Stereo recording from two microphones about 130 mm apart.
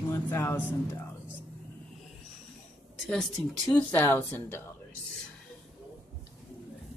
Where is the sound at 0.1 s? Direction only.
20° left (ahead or behind).